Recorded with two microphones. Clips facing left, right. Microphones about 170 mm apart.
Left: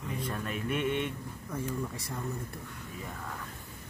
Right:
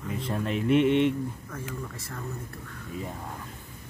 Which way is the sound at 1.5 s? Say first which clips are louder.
Left 3 dB; 10° left (ahead or behind).